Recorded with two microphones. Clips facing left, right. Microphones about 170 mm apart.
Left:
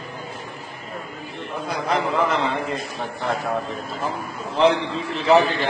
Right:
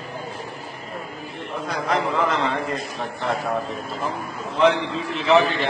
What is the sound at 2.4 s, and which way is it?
A man's voice, centre (ahead or behind).